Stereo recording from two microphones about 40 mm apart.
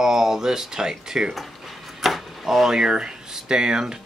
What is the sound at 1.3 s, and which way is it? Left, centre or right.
Drawer open or close, centre.